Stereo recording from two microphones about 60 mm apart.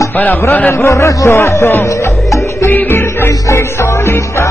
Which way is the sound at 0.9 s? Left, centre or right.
Left.